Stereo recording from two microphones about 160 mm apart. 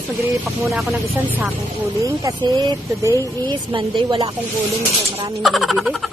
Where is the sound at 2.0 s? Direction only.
25° right (ahead or behind).